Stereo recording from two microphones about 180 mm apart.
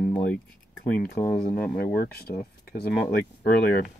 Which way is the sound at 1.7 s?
55° left (ahead or behind).